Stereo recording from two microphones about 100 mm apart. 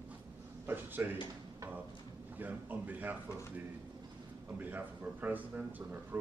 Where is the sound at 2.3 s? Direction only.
20° right (ahead or behind).